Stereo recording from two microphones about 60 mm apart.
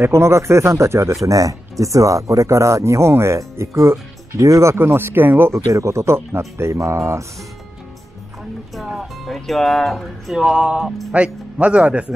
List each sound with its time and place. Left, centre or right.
0.0 s speech: right
1.2 s speech: right
4.7 s speech: right
5.5 s speech: right
8.8 s speech: centre
11.1 s speech: centre